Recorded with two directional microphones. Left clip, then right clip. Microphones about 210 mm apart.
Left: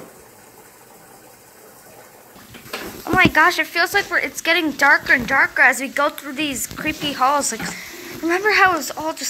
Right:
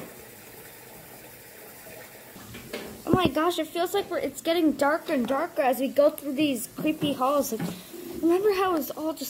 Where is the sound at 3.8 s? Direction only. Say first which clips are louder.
Left 9 dB; 10° left (ahead or behind).